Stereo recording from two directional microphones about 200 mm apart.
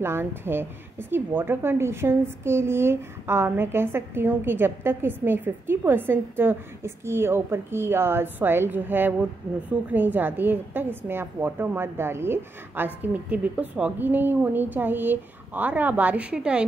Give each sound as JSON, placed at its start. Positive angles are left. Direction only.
{"t": 0.0, "sound": "a woman's voice", "side_deg": -10}